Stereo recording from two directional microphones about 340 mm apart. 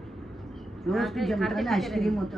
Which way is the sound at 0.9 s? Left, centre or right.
Centre.